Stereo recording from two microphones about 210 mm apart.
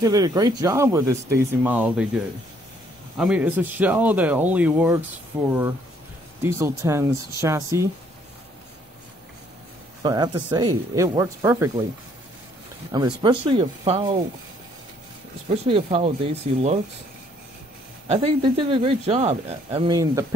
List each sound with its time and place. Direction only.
0.0 s speech: 15° right (ahead or behind)
3.2 s speech: 5° right (ahead or behind)
10.0 s speech: 20° right (ahead or behind)
12.9 s speech: 20° right (ahead or behind)
15.5 s speech: 30° right (ahead or behind)
18.0 s speech: 25° right (ahead or behind)